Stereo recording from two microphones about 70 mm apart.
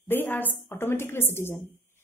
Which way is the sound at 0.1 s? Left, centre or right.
Left.